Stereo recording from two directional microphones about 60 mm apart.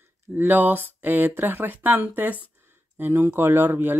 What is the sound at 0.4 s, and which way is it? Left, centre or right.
Speech, right.